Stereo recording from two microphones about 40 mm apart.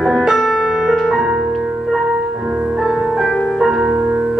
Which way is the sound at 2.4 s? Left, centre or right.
Right.